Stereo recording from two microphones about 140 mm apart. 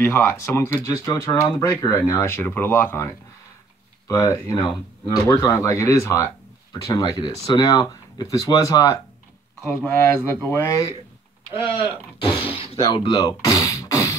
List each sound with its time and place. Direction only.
0.0 s speech: 20° left (ahead or behind)
4.1 s speech: 20° left (ahead or behind)
11.7 s speech: 35° left (ahead or behind)
12.9 s music: 30° left (ahead or behind)